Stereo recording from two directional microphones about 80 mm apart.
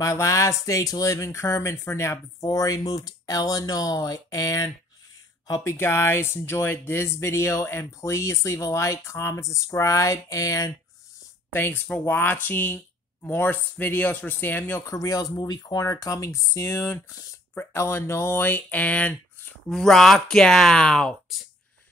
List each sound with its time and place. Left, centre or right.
0.0 s speech: left
5.5 s speech: left
11.5 s speech: left
14.9 s speech: left
15.7 s speech: left; by 19.5 s centre
19.7 s speech: centre